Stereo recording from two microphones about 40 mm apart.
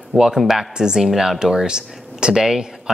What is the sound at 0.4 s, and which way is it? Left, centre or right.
Speech, centre.